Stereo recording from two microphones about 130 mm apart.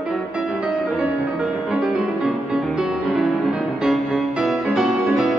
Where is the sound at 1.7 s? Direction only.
5° right (ahead or behind).